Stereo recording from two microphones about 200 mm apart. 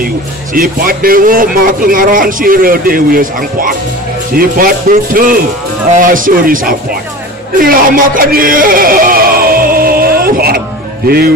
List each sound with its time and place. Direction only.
0.6 s a man's voice: 45° right (ahead or behind)
7.5 s a sound: 45° right (ahead or behind)
11.1 s a man's voice: 50° right (ahead or behind)